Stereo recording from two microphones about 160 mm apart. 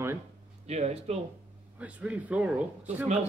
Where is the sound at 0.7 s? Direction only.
40° right (ahead or behind).